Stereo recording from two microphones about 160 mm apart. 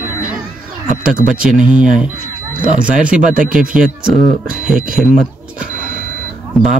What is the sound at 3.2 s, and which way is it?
Speech, 55° right (ahead or behind).